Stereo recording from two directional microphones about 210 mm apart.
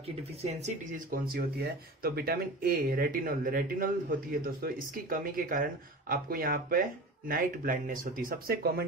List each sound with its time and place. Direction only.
0.0 s speech: 30° right (ahead or behind); by 8.8 s 45° right (ahead or behind)